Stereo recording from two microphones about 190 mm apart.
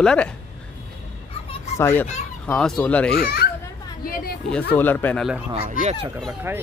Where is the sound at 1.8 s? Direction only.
10° left (ahead or behind).